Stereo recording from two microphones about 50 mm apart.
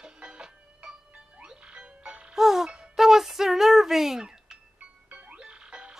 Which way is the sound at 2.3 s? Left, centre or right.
Centre.